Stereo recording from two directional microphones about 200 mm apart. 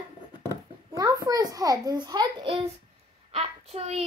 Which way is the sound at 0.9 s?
20° right (ahead or behind).